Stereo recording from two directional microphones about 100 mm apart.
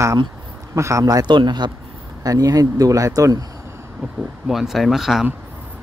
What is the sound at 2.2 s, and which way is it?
Speech, 35° right (ahead or behind).